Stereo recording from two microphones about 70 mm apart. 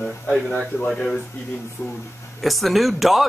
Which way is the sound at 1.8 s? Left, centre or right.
Left.